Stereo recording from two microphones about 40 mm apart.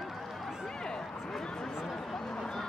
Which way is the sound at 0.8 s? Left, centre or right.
Centre.